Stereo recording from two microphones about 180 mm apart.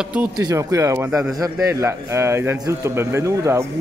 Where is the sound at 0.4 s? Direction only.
20° right (ahead or behind).